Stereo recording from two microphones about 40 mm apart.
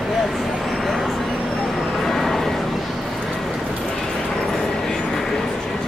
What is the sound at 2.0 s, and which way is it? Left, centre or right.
Vehicle, centre.